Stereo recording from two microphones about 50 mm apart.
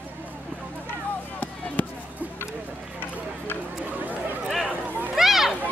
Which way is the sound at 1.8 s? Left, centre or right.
Left.